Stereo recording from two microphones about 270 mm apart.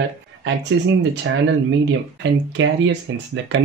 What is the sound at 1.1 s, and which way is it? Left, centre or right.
Speech, right.